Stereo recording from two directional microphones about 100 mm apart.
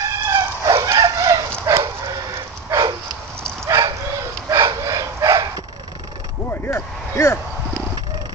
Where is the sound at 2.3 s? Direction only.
30° right (ahead or behind).